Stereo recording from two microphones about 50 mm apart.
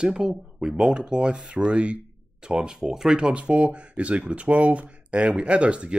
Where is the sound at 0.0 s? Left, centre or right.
Centre.